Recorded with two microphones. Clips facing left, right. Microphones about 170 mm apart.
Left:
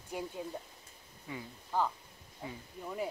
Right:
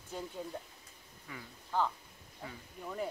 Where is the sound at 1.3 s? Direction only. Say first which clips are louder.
Left 1 dB; 25° left (ahead or behind).